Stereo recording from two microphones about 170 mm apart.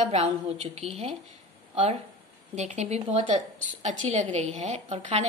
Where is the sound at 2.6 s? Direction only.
40° right (ahead or behind).